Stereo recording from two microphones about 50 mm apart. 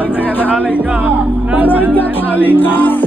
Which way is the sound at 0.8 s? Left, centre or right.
Right.